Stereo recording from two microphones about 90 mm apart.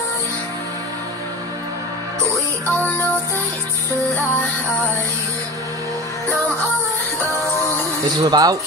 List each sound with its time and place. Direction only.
4.1 s music: 15° left (ahead or behind)
8.2 s speech: 45° right (ahead or behind)